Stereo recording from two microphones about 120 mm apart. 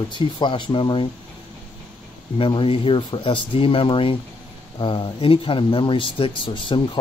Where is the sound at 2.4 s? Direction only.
45° left (ahead or behind).